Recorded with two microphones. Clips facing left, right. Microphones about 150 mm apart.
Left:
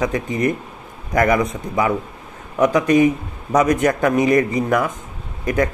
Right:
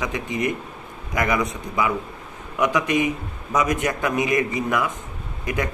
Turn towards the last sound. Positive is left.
turn(degrees=40)  # may be behind; listen again after turning